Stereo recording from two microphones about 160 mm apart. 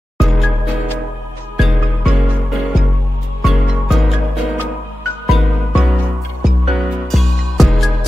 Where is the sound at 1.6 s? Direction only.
Centre (ahead or behind).